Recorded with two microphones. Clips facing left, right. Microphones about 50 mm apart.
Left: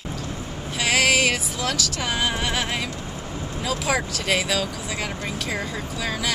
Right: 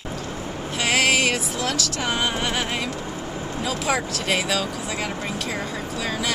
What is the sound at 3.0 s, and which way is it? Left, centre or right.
Vehicle, right.